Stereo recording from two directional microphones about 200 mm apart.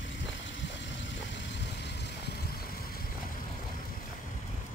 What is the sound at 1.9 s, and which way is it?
Vehicle, 55° left (ahead or behind).